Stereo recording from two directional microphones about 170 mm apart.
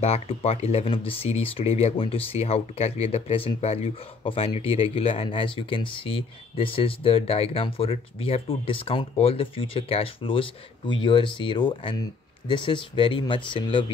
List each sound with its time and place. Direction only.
0.0 s speech: 35° left (ahead or behind)